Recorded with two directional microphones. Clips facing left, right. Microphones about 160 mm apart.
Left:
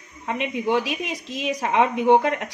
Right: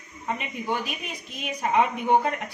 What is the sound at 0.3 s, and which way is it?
A woman's voice, 80° left.